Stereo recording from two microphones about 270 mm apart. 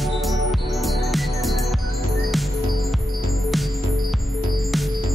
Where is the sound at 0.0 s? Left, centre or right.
Centre.